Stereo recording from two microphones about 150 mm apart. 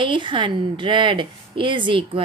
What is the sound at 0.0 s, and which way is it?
A woman's voice, 30° right (ahead or behind).